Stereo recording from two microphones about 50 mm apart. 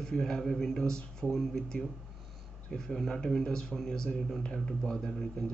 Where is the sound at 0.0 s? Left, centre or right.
Centre.